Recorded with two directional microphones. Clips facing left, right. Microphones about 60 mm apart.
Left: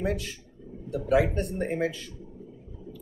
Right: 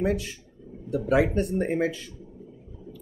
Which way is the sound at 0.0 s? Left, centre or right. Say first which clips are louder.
Right 4 dB; centre.